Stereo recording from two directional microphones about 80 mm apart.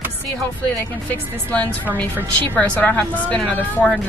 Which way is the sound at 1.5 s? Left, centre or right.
Centre.